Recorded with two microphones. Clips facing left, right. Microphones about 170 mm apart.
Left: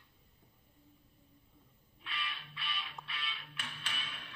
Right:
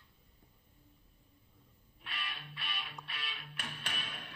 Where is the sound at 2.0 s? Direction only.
45° right (ahead or behind).